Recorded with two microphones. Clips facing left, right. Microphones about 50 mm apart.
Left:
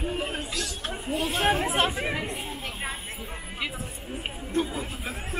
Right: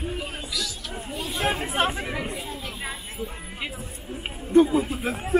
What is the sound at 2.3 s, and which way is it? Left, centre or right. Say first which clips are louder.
Chatter: right 1 dB; left.